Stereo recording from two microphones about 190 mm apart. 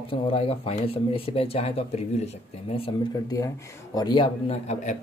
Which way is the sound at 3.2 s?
20° left (ahead or behind).